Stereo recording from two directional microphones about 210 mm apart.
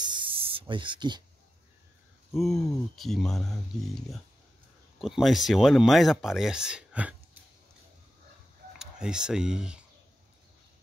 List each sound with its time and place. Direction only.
0.0 s spray: 20° right (ahead or behind)
2.3 s speech: centre (ahead or behind)
8.7 s speech: 5° right (ahead or behind)